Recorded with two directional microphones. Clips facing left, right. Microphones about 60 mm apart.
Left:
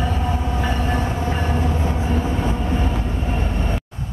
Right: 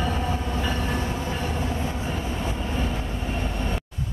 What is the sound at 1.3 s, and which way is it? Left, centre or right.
Train, left.